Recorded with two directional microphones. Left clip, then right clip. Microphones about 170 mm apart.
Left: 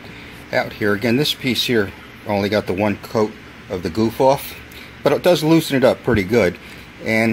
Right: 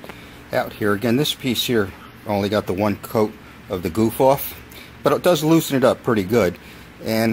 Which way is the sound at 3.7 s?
20° right (ahead or behind).